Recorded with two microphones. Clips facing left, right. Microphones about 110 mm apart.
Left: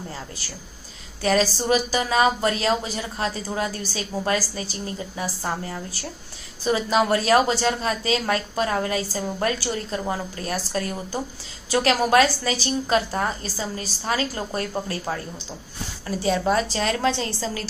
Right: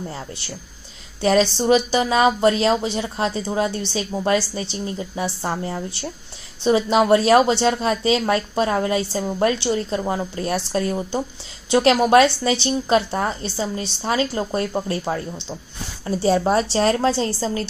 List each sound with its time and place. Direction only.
1.2 s a woman's voice: 25° right (ahead or behind)